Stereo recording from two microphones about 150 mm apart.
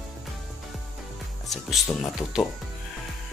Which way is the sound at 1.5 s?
Centre (ahead or behind).